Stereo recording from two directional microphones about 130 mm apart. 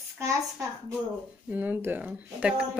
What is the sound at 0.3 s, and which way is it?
A woman's voice, 20° right (ahead or behind).